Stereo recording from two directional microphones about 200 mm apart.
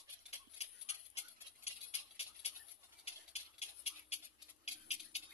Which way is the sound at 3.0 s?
30° left (ahead or behind).